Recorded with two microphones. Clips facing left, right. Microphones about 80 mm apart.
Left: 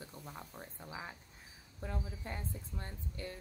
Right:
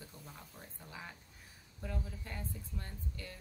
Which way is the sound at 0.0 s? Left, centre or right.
Left.